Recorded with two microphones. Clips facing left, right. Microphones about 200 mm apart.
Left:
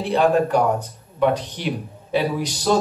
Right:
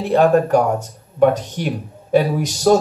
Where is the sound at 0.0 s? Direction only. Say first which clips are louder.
Right 4 dB; 45° right (ahead or behind).